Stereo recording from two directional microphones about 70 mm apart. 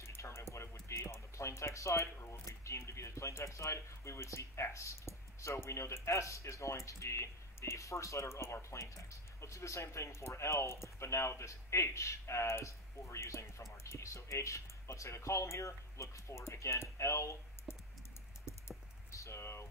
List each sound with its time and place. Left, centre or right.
0.0 s music: left
0.8 s speech: left
18.4 s typing: left